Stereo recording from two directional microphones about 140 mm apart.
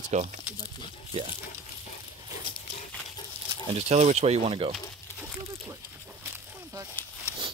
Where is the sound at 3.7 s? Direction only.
50° right (ahead or behind).